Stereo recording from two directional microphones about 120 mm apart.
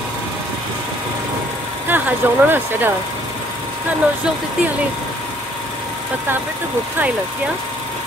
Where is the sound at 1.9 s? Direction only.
15° right (ahead or behind).